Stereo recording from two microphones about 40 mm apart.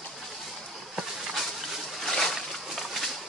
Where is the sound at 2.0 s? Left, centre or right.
Centre.